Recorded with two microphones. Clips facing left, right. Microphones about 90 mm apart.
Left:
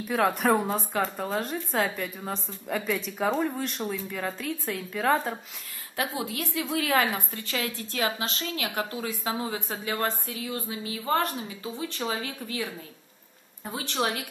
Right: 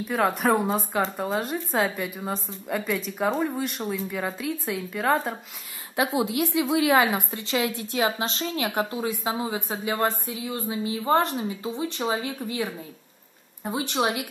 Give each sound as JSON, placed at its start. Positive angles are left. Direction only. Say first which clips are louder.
{"t": 0.1, "sound": "speech", "louder": "right 1 dB", "side_deg": 0}
{"t": 5.9, "sound": "a woman's voice", "louder": "right 7 dB", "side_deg": -20}